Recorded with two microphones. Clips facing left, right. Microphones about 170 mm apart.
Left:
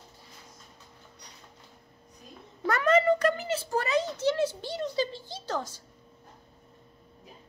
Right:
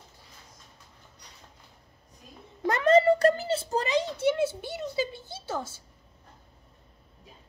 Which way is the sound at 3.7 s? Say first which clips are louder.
Left 1 dB; 10° right (ahead or behind).